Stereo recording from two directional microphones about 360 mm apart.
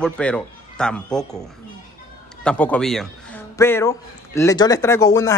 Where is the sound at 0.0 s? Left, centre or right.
Centre.